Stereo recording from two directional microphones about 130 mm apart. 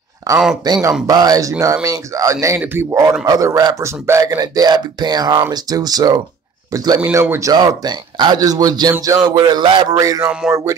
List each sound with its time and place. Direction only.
0.3 s a man's voice: 30° right (ahead or behind)
9.7 s a man's voice: 40° right (ahead or behind)
9.9 s a man's voice: 25° right (ahead or behind)
10.4 s speech: centre (ahead or behind)